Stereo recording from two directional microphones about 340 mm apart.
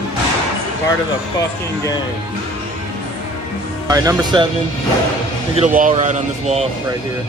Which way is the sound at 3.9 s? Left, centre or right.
Centre.